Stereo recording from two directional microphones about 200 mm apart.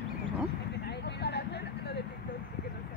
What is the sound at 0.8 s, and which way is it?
Vehicle, 55° left (ahead or behind).